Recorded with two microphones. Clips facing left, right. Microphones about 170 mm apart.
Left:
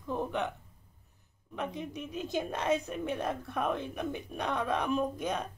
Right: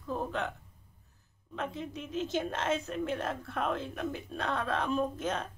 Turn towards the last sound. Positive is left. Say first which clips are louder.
# even
turn(degrees=15)  # may be behind; listen again after turning